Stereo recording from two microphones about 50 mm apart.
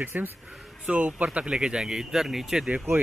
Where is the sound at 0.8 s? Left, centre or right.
Right.